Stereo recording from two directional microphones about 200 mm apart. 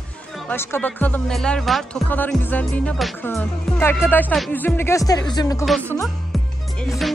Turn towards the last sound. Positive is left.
turn(degrees=0)  # may be behind; listen again after turning